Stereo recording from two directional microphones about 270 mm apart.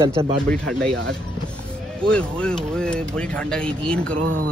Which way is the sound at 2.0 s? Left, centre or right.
Centre.